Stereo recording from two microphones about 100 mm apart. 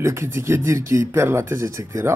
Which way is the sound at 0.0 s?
30° right (ahead or behind).